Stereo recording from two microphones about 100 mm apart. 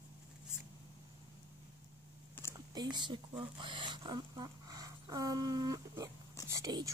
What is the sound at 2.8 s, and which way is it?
A woman's voice, 50° right (ahead or behind).